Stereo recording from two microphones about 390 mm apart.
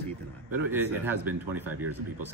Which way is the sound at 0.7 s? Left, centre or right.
Centre.